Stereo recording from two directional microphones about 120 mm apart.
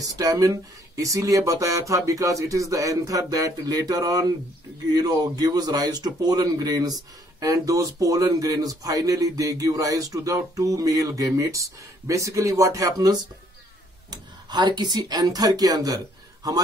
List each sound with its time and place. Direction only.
0.0 s speech: 30° right (ahead or behind)